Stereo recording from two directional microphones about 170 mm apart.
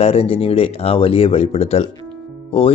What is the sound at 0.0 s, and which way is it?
Speech, 35° left (ahead or behind).